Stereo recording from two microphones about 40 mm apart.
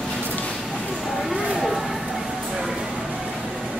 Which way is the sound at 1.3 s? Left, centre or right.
Right.